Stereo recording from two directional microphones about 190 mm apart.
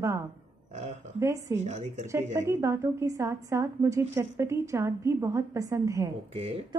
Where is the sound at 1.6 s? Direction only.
35° right (ahead or behind).